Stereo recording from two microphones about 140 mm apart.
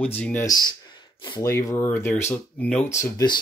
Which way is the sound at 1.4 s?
20° left (ahead or behind).